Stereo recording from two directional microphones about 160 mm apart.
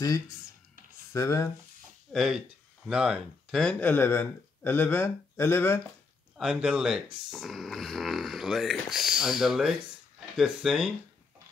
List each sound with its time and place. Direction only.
1.1 s speech: 20° left (ahead or behind)
2.1 s speech: 5° right (ahead or behind); by 5.8 s 15° left (ahead or behind)
6.3 s speech: 5° right (ahead or behind)